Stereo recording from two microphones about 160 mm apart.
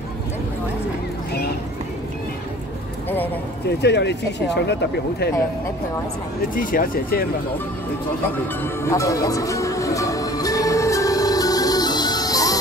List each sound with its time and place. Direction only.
3.8 s speech: 90° left
6.5 s speech: 60° left (ahead or behind)
8.8 s music: 20° left (ahead or behind)